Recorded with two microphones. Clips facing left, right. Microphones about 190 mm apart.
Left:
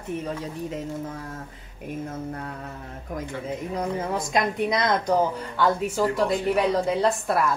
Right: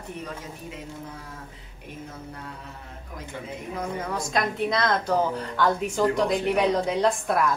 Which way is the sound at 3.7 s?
35° left (ahead or behind).